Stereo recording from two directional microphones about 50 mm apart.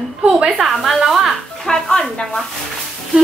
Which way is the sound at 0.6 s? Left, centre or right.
Centre.